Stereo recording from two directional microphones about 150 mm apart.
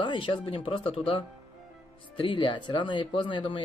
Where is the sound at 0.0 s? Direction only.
35° left (ahead or behind).